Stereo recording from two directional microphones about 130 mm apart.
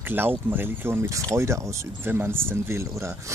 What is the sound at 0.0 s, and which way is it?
Speech, 15° right (ahead or behind).